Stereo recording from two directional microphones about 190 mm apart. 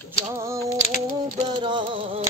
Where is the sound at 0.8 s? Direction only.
40° left (ahead or behind).